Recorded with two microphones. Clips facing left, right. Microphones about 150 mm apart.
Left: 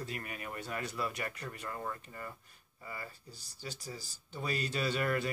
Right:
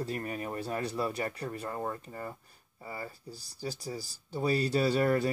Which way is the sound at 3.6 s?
35° right (ahead or behind).